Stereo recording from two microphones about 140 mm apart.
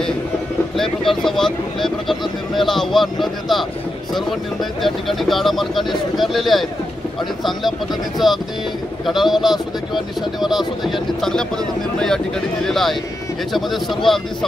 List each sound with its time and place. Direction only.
1.2 s speech: centre (ahead or behind)